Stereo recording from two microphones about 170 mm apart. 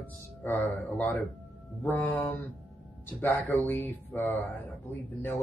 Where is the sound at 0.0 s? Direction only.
10° left (ahead or behind).